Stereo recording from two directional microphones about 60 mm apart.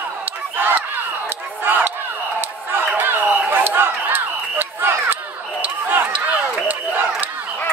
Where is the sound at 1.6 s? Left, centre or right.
Right.